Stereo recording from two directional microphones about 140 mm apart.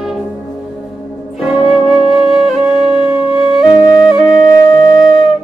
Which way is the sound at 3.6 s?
30° left (ahead or behind).